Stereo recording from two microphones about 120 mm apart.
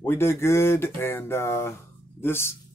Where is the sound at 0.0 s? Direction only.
20° left (ahead or behind).